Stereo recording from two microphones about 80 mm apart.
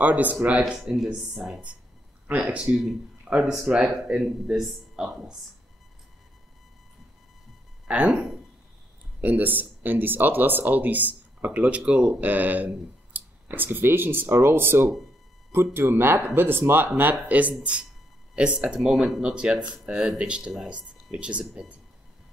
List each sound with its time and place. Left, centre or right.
0.0 s speech: centre
1.3 s speech: centre
7.9 s speech: centre